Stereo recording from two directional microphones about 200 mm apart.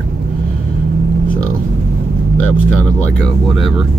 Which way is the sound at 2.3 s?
5° left (ahead or behind).